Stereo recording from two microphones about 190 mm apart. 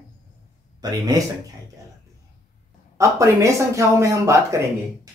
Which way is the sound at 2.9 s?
15° right (ahead or behind).